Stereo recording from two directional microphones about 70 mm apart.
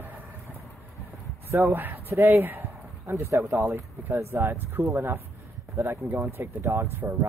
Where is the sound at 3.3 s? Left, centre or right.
Right.